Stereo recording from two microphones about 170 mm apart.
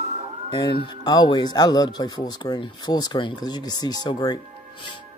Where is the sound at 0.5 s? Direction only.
25° left (ahead or behind).